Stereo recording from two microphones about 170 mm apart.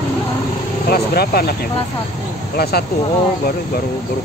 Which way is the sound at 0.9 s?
65° left (ahead or behind).